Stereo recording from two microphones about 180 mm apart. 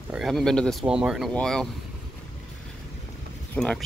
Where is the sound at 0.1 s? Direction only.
Centre (ahead or behind).